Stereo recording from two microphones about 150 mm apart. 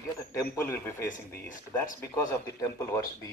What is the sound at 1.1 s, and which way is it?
Speech, 60° left (ahead or behind).